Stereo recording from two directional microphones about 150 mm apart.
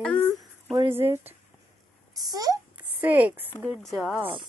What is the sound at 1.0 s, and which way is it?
Speech, 15° right (ahead or behind).